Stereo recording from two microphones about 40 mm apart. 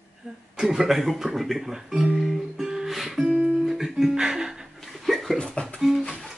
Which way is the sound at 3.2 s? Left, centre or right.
Right.